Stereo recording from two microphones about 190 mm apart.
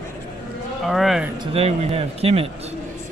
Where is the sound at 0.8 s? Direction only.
Centre (ahead or behind).